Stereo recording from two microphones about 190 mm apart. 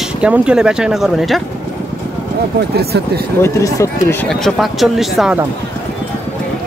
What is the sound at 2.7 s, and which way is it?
Speech, 55° right (ahead or behind).